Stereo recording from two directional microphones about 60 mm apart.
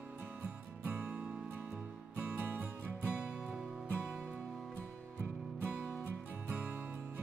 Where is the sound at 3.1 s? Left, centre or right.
Centre.